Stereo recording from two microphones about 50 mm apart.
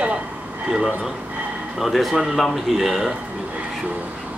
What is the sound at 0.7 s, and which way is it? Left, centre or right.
Speech, centre.